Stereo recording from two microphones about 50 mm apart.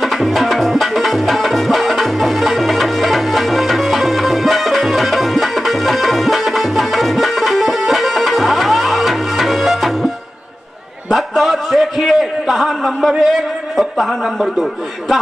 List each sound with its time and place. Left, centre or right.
0.0 s music: centre
11.1 s a sound: centre
13.2 s a man's voice: centre